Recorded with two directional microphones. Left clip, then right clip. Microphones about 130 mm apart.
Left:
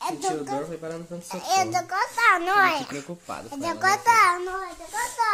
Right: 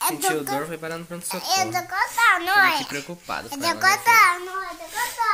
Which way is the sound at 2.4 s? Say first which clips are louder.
Right 2 dB; 90° left.